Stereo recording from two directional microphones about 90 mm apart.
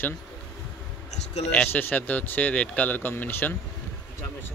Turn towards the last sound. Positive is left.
turn(degrees=20)  # may be behind; listen again after turning